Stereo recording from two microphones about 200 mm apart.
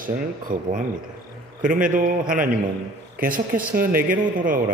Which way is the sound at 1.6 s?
40° right (ahead or behind).